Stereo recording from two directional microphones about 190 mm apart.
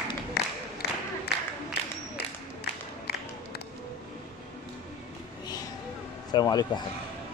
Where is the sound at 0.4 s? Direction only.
55° left (ahead or behind).